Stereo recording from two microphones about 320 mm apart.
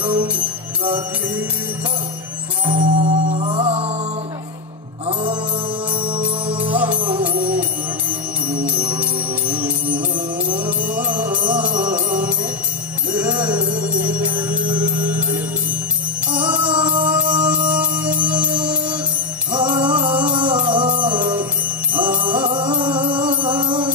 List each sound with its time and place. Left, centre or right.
0.0 s music: centre
2.6 s music: centre
5.0 s music: centre
6.8 s music: centre
8.6 s music: centre
13.7 s music: right
14.2 s music: centre